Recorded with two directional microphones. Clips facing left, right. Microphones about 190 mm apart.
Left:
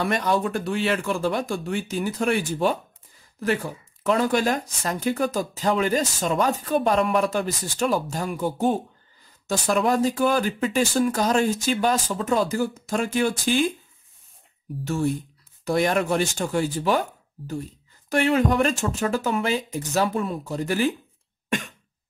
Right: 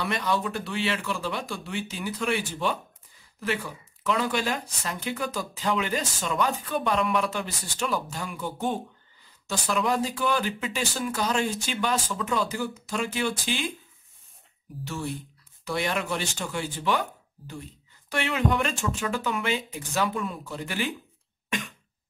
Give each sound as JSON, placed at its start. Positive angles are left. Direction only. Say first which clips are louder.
{"t": 0.0, "sound": "speech", "louder": "left 5 dB", "side_deg": 45}
{"t": 15.6, "sound": "speech", "louder": "left 7 dB", "side_deg": 45}
{"t": 18.1, "sound": "speech", "louder": "left 6 dB", "side_deg": 45}
{"t": 21.5, "sound": "cough", "louder": "left 5 dB", "side_deg": 45}